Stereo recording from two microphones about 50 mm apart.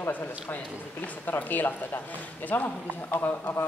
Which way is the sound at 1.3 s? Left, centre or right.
Left.